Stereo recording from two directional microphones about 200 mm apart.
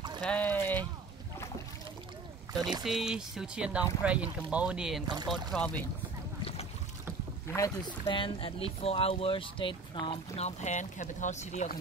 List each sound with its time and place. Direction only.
0.2 s a sound: 5° left (ahead or behind)
2.8 s speech: centre (ahead or behind)
5.0 s speech: 20° right (ahead or behind)
5.5 s speech: 5° left (ahead or behind)
7.5 s speech: 20° left (ahead or behind); by 11.8 s 35° left (ahead or behind)